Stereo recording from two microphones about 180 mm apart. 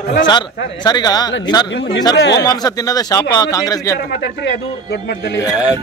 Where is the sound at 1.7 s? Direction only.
85° left.